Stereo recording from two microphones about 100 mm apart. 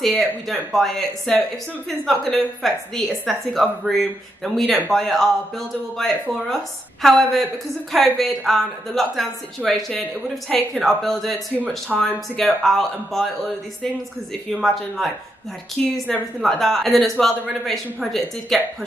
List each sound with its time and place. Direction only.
0.0 s a woman's voice: centre (ahead or behind)
6.5 s a woman's voice: 5° left (ahead or behind)
11.5 s speech: 15° right (ahead or behind)
12.6 s a woman's voice: 5° left (ahead or behind)
14.5 s a woman's voice: centre (ahead or behind)